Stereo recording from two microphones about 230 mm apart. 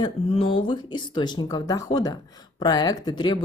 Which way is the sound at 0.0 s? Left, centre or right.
Left.